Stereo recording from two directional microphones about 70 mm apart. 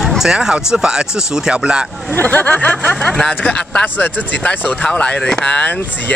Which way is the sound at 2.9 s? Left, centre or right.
Centre.